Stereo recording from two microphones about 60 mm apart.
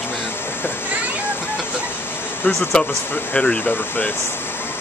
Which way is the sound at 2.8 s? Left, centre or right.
Centre.